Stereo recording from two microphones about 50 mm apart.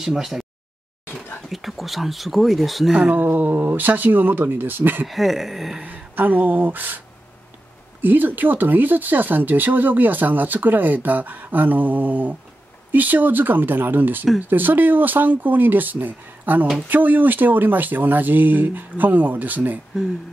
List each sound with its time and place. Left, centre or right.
0.0 s a sound: centre
1.5 s speech: centre
2.9 s speech: right
5.0 s speech: centre
5.9 s speech: right
8.0 s speech: right